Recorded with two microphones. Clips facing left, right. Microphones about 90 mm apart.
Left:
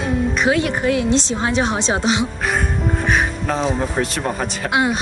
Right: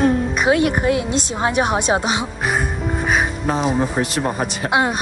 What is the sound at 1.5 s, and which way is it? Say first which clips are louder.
Speech: right 2 dB; 15° right (ahead or behind).